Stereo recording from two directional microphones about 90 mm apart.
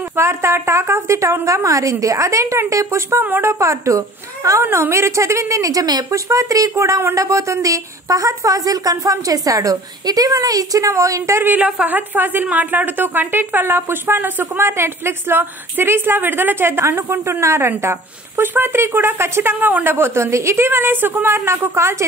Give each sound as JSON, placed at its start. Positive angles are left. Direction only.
{"t": 0.1, "sound": "a woman's voice", "side_deg": -30}
{"t": 11.4, "sound": "a woman's voice", "side_deg": -15}